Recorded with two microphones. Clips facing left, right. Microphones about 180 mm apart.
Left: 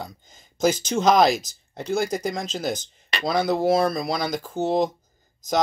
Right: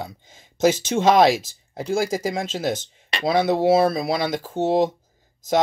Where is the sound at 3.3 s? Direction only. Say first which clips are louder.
Right 3 dB; 5° right (ahead or behind).